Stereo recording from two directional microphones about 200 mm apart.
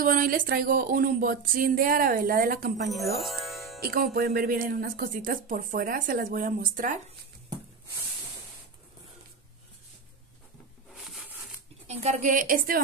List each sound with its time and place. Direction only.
0.0 s speech: 45° right (ahead or behind)
3.2 s music: centre (ahead or behind)
3.8 s speech: 45° right (ahead or behind)
11.0 s a sound: centre (ahead or behind)
11.9 s a woman's voice: 35° right (ahead or behind)